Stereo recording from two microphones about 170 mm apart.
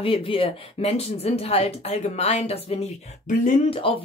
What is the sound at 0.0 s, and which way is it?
Speech, 30° left (ahead or behind).